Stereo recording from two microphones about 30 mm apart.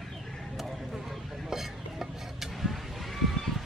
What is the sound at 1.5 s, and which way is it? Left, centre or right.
Stir, centre.